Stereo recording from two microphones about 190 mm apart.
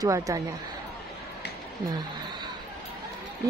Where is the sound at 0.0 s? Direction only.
15° right (ahead or behind).